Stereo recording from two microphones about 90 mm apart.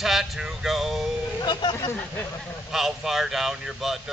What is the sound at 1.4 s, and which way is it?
Speech, 55° left (ahead or behind).